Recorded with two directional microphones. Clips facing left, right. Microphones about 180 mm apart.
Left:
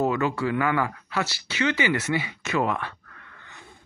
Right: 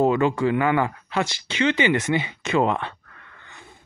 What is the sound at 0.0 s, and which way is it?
Speech, 25° right (ahead or behind).